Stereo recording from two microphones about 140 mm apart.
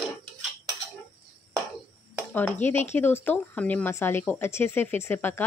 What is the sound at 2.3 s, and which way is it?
Speech, 10° left (ahead or behind).